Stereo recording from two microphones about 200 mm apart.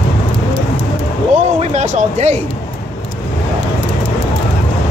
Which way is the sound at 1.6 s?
35° right (ahead or behind).